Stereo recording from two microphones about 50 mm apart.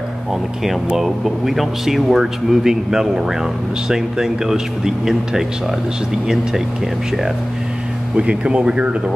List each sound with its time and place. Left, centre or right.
0.3 s speech: centre
8.2 s speech: right